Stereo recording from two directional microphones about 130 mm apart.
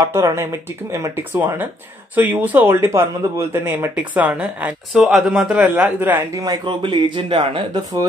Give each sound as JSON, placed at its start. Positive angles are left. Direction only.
{"t": 0.0, "sound": "speech", "side_deg": -25}
{"t": 6.4, "sound": "speech", "side_deg": -35}